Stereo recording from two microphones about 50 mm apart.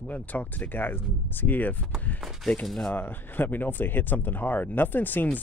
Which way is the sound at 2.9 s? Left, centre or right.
Left.